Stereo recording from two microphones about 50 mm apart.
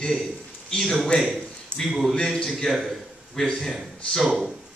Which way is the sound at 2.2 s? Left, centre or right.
Centre.